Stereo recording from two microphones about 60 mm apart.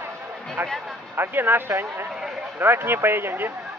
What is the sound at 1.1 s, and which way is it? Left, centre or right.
Speech, right.